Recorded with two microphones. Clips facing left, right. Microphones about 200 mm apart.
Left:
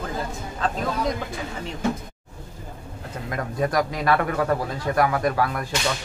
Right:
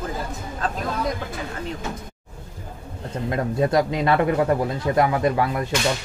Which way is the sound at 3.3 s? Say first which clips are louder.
Right 4 dB; 25° right (ahead or behind).